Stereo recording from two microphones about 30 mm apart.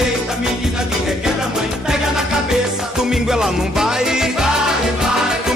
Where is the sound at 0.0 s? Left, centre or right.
Centre.